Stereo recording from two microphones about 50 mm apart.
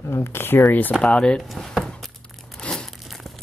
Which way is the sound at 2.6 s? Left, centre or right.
Centre.